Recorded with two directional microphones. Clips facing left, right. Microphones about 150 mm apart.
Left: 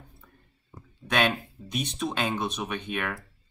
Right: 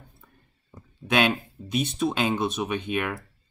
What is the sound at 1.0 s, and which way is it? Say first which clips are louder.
Speech: right 3 dB; 5° right (ahead or behind).